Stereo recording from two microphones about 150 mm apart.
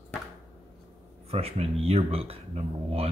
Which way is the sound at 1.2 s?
40° right (ahead or behind).